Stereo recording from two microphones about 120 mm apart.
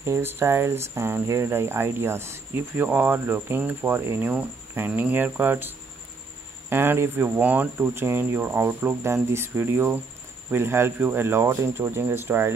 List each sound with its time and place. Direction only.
0.0 s speech: 20° right (ahead or behind)
6.7 s speech: 20° right (ahead or behind)